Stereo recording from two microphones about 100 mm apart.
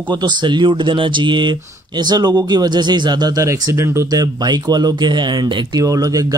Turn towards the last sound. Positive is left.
turn(degrees=-35)  # may be behind; listen again after turning